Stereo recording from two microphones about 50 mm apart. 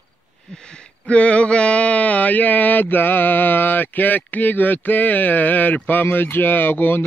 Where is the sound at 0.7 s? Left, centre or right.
Left.